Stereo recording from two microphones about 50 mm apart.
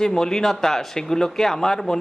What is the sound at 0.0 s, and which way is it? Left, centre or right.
Speech, centre.